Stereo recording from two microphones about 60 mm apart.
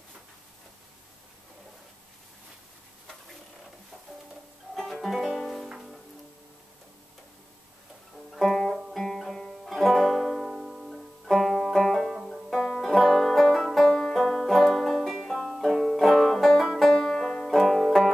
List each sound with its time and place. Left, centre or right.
4.7 s music: centre
8.3 s music: centre
12.4 s music: centre
13.9 s banjo: centre